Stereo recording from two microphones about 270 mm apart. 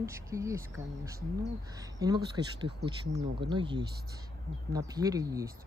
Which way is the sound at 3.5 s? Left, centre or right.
Centre.